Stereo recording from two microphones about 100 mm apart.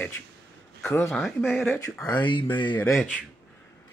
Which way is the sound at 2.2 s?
50° left (ahead or behind).